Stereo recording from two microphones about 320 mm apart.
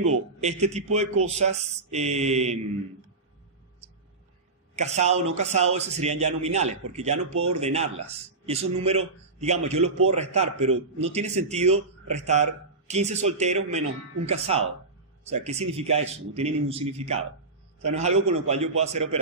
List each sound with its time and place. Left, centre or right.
0.4 s a man's voice: right
4.7 s a man's voice: right